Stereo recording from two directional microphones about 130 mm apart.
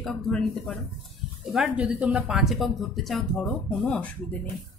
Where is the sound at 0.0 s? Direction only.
Centre (ahead or behind).